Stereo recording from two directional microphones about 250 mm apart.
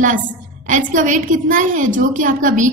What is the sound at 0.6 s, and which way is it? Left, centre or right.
A woman's voice, right.